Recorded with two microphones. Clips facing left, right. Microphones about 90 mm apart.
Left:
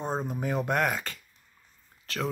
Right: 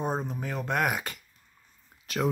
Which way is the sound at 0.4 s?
15° left (ahead or behind).